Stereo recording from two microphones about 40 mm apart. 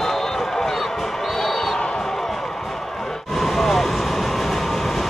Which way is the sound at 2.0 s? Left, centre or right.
Centre.